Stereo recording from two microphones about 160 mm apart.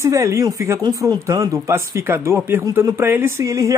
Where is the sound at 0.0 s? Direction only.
20° right (ahead or behind).